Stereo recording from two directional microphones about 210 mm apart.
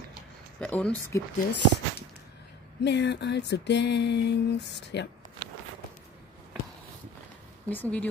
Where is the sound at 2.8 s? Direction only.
55° left (ahead or behind).